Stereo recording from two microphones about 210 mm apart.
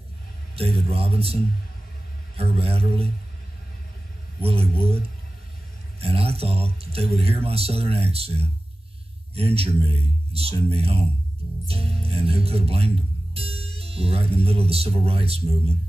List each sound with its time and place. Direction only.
0.6 s speech: 25° right (ahead or behind)
4.4 s speech: 25° right (ahead or behind)